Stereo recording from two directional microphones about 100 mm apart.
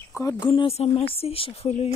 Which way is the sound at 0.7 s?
90° left.